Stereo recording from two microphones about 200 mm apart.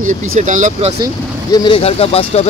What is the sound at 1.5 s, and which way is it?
Speech, 25° left (ahead or behind).